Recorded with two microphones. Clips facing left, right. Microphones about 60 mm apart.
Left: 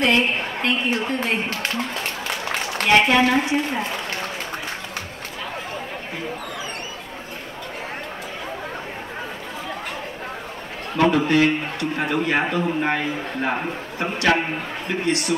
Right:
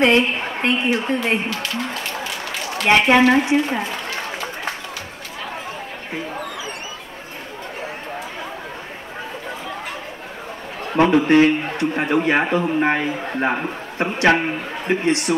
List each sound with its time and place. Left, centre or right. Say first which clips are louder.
0.0 s a woman's voice: right 3 dB; right
2.8 s a woman's voice: right 3 dB; right
11.0 s a man's voice: right 4 dB; right